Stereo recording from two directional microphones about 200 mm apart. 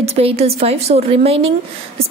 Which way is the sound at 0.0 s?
30° right (ahead or behind).